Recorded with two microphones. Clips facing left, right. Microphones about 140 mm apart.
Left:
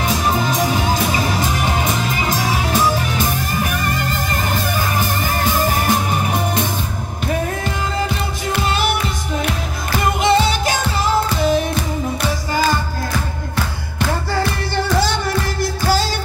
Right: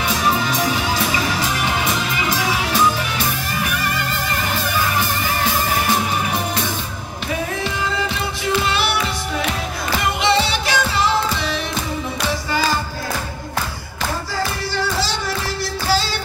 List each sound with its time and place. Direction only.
0.0 s music: 40° left (ahead or behind)
8.5 s music: 45° left (ahead or behind)
15.0 s music: 50° left (ahead or behind)